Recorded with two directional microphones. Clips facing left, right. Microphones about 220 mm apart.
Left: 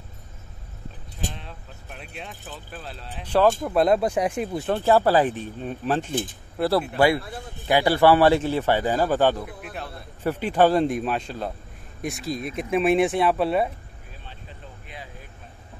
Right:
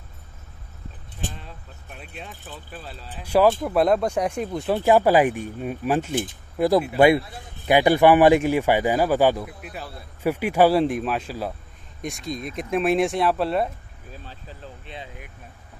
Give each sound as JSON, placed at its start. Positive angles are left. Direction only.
{"t": 1.3, "sound": "speech", "side_deg": 0}
{"t": 4.7, "sound": "speech", "side_deg": -15}
{"t": 14.9, "sound": "vehicle", "side_deg": -25}